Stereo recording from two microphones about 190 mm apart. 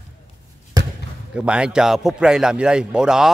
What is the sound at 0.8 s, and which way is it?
Basketball bounce, 20° right (ahead or behind).